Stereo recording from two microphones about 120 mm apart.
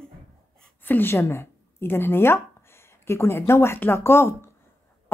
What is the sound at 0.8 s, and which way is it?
Speech, 15° left (ahead or behind).